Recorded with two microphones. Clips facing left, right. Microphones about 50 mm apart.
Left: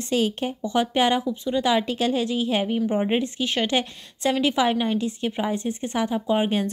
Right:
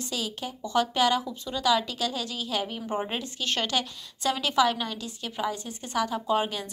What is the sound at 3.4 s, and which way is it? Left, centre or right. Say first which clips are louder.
Speech: left 5 dB; centre.